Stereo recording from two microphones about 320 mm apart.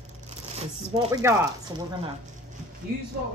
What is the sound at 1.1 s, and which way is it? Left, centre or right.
Speech, centre.